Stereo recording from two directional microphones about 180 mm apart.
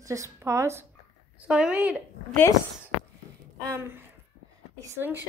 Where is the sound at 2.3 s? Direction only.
10° left (ahead or behind).